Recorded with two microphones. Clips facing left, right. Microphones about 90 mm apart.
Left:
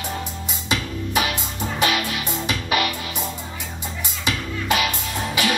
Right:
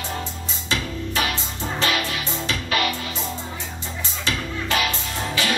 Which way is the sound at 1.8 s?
15° left (ahead or behind).